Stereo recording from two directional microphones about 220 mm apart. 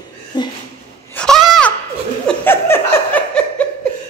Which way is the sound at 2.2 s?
10° left (ahead or behind).